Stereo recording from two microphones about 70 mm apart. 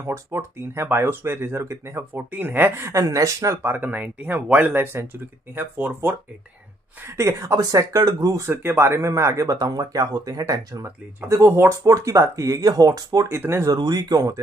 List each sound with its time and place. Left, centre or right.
0.0 s speech: right
2.1 s speech: right
2.9 s speech: right
3.6 s speech: right
7.5 s speech: right
8.5 s speech: right
9.6 s speech: right
11.4 s speech: right
13.3 s speech: right
13.7 s speech: right